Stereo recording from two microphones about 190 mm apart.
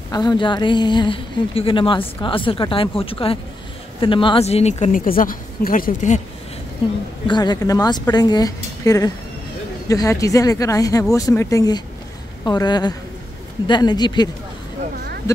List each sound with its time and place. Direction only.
0.1 s a woman's voice: 20° left (ahead or behind); by 6.2 s 40° left (ahead or behind)
7.2 s a woman's voice: 20° left (ahead or behind)